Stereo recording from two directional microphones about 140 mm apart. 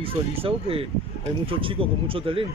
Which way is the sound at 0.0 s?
40° right (ahead or behind).